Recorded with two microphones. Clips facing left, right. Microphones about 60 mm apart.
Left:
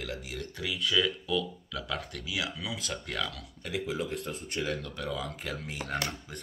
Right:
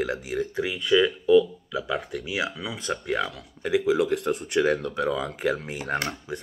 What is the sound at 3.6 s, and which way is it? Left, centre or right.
Speech, right.